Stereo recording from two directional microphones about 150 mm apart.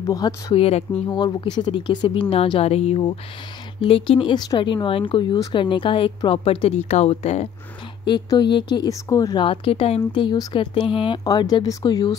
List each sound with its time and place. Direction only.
0.0 s speech: 25° left (ahead or behind)
0.6 s speech: 45° left (ahead or behind)
1.1 s speech: 30° left (ahead or behind); by 7.4 s 45° left (ahead or behind)
8.1 s speech: 30° left (ahead or behind)